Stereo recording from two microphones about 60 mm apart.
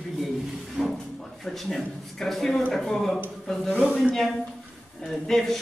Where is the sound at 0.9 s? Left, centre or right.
Centre.